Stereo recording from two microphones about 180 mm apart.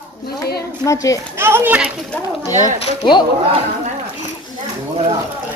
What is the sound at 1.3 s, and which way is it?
Speech, 15° right (ahead or behind).